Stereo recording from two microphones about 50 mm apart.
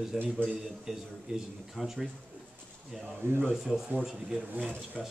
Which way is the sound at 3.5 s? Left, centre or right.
Centre.